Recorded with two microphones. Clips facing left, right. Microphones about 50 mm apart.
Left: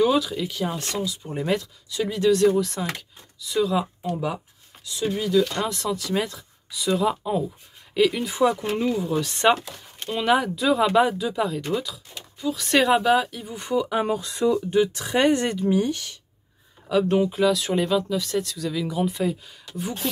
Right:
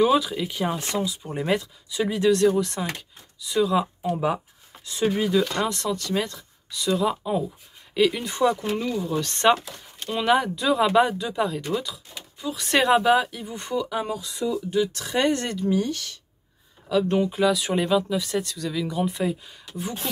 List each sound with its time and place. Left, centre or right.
0.0 s speech: centre
4.1 s speech: right
5.7 s speech: centre
8.7 s speech: centre
9.0 s speech: centre
14.0 s speech: left
14.7 s speech: left
16.9 s speech: centre
17.4 s speech: centre